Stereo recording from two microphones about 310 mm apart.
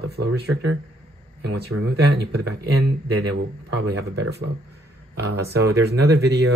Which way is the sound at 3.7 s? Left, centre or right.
Right.